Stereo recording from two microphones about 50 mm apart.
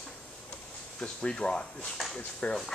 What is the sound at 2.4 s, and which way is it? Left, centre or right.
Speech, left.